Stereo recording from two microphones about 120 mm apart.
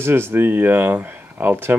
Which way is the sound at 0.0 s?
20° right (ahead or behind).